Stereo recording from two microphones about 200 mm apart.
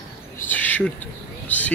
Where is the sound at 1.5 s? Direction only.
10° left (ahead or behind).